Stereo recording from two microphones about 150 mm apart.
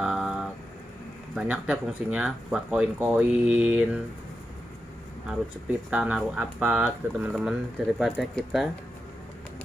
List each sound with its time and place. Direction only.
0.0 s a sound: 5° right (ahead or behind)
1.3 s speech: 10° right (ahead or behind)
5.3 s speech: 10° right (ahead or behind)